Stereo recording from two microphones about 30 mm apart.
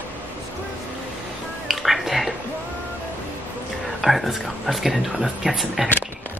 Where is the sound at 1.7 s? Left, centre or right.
Centre.